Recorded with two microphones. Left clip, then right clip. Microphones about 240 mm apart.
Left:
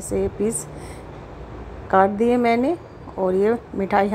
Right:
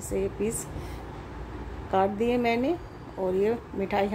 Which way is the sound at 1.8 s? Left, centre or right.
Centre.